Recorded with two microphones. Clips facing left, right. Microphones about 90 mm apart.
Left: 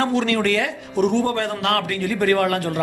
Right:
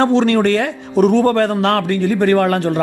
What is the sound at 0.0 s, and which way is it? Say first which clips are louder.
A man's voice: right 7 dB; 30° right (ahead or behind).